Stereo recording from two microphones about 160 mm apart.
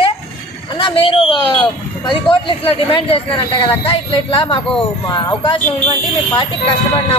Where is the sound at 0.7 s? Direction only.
35° left (ahead or behind).